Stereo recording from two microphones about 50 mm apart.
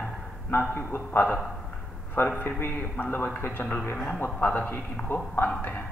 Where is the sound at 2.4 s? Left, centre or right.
Left.